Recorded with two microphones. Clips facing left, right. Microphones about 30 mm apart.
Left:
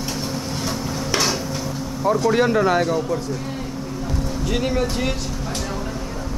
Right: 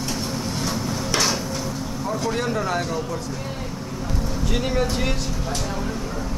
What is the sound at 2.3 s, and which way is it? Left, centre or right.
Speech, centre.